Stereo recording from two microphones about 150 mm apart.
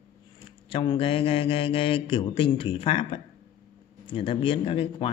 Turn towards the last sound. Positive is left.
turn(degrees=35)  # may be behind; listen again after turning